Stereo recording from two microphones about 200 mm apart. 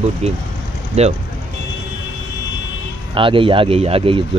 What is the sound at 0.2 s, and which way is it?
Speech, 30° right (ahead or behind).